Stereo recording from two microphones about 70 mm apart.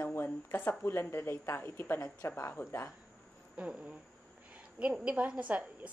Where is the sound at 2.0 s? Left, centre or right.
Left.